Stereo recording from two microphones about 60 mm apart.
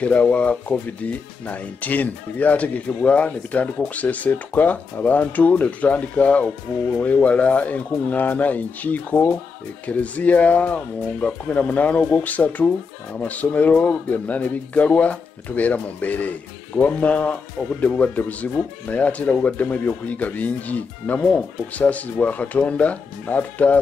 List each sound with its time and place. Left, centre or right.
0.0 s speech: left